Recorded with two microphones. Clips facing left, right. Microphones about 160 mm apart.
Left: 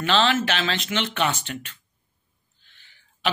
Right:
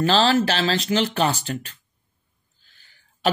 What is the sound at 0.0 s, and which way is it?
Speech, 35° right (ahead or behind).